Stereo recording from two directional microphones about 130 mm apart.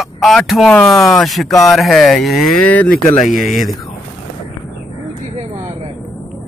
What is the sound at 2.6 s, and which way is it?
Speech, 10° left (ahead or behind).